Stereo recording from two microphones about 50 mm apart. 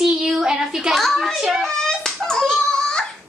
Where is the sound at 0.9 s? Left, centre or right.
Centre.